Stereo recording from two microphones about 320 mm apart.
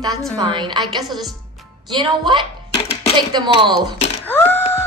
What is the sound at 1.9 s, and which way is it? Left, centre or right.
A woman's voice, centre.